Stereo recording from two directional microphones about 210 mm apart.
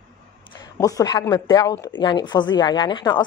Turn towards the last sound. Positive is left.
turn(degrees=20)  # may be behind; listen again after turning